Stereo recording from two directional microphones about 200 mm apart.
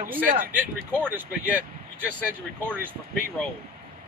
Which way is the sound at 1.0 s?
10° right (ahead or behind).